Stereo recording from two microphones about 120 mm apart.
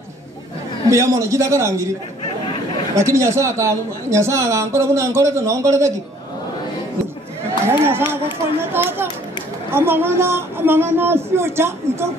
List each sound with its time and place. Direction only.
0.8 s a man's voice: 25° right (ahead or behind)
3.0 s a man's voice: 25° right (ahead or behind)
7.6 s a man's voice: 20° right (ahead or behind)